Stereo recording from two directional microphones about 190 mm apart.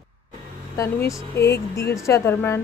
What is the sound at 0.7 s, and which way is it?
Speech, 15° left (ahead or behind).